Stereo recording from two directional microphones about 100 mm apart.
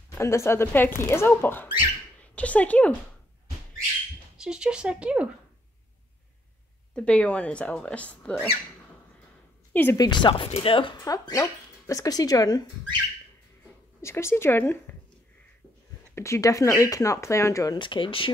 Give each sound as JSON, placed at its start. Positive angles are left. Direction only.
{"t": 0.1, "sound": "a woman's voice", "side_deg": 30}
{"t": 4.4, "sound": "speech", "side_deg": -5}
{"t": 6.9, "sound": "speech", "side_deg": 10}
{"t": 9.7, "sound": "a sound", "side_deg": 20}
{"t": 9.9, "sound": "speech", "side_deg": 45}
{"t": 10.5, "sound": "speech", "side_deg": 60}
{"t": 11.0, "sound": "speech", "side_deg": 35}
{"t": 14.0, "sound": "speech", "side_deg": 25}
{"t": 16.2, "sound": "speech", "side_deg": 30}
{"t": 17.7, "sound": "speech", "side_deg": 55}